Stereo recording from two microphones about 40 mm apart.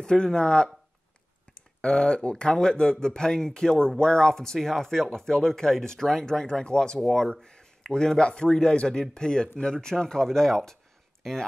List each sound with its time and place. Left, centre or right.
0.0 s speech: left
6.4 s speech: centre